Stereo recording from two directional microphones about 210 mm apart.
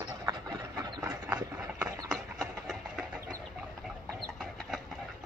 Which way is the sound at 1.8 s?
15° right (ahead or behind).